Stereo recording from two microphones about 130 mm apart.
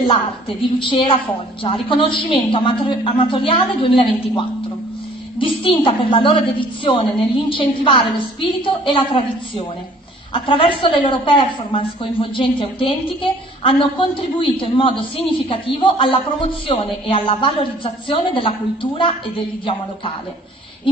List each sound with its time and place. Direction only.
0.0 s a woman's voice: 40° left (ahead or behind)
10.3 s a woman's voice: 40° left (ahead or behind)